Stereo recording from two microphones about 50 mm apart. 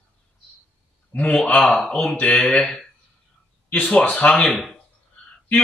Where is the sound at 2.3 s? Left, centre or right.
Centre.